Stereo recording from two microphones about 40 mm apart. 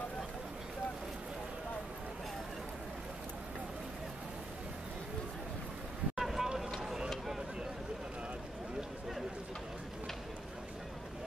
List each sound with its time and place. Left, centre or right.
6.1 s vehicle: centre